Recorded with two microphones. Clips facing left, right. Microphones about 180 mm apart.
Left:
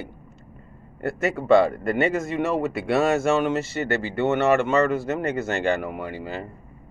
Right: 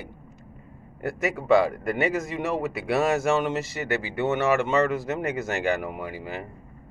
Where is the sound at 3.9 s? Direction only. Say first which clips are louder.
Left 2 dB; 15° right (ahead or behind).